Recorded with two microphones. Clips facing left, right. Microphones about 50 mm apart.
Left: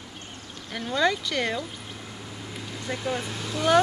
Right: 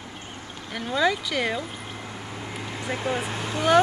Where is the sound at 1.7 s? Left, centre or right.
Right.